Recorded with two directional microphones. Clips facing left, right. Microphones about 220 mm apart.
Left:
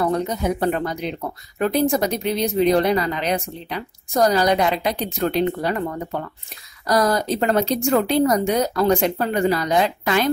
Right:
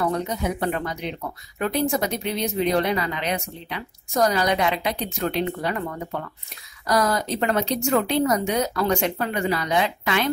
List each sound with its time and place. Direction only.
0.0 s speech: 35° left (ahead or behind)
6.9 s speech: 35° left (ahead or behind)